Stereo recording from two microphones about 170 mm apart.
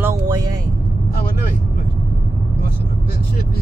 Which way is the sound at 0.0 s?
20° right (ahead or behind).